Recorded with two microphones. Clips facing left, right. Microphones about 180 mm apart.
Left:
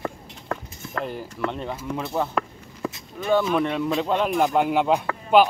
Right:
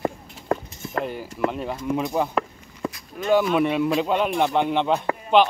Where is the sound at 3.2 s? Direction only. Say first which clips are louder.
Right 2 dB; centre (ahead or behind).